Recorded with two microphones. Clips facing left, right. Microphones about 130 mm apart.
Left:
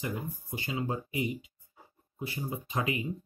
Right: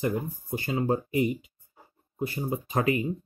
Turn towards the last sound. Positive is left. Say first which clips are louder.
# right 7 dB
turn(degrees=-45)  # may be behind; listen again after turning